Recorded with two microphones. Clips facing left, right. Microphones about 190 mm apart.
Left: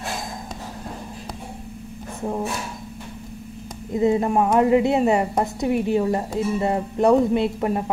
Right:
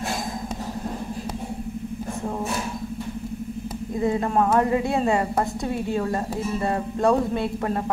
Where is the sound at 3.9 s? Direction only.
20° left (ahead or behind).